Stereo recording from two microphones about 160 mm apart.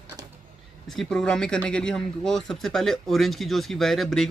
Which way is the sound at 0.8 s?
5° left (ahead or behind).